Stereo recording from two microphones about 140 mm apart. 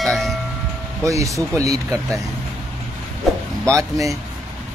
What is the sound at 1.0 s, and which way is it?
Speech, 25° right (ahead or behind).